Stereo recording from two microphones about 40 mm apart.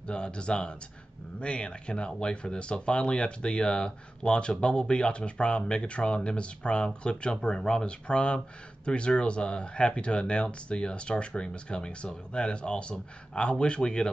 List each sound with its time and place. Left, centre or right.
0.0 s speech: left